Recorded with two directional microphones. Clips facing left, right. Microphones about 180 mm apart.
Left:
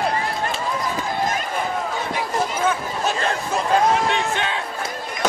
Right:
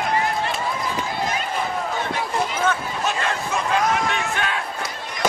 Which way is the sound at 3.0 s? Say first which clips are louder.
Left 2 dB; 35° left (ahead or behind).